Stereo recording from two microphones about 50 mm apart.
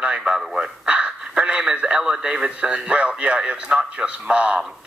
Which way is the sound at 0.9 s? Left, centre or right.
Right.